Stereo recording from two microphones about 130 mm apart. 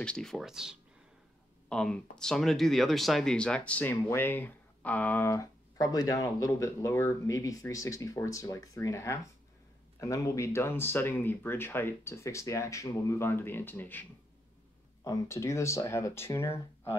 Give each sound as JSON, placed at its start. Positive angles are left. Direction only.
{"t": 0.0, "sound": "speech", "side_deg": 5}
{"t": 1.7, "sound": "speech", "side_deg": 5}
{"t": 15.0, "sound": "speech", "side_deg": 20}